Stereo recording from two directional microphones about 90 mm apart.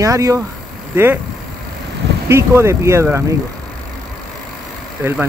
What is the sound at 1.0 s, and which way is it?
Speech, 25° right (ahead or behind).